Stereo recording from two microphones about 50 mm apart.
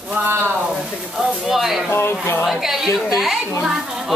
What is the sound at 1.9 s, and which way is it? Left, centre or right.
Speech, left.